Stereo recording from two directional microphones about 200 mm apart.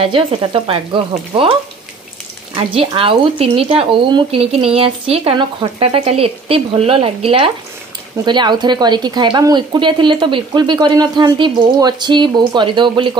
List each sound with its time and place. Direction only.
0.0 s a woman's voice: 25° right (ahead or behind)
2.5 s a woman's voice: 25° right (ahead or behind)